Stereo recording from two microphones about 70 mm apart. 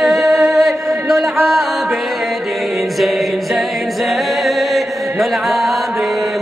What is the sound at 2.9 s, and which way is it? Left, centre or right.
Music, centre.